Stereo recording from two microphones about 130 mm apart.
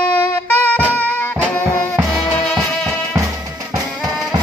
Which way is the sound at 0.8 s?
10° left (ahead or behind).